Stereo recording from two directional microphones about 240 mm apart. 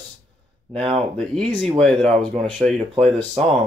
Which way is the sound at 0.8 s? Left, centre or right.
Right.